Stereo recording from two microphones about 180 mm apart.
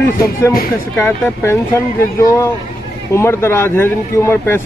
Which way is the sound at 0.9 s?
10° left (ahead or behind).